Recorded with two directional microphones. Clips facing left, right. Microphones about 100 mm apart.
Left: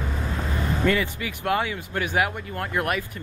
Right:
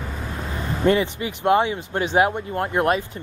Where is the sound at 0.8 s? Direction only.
25° right (ahead or behind).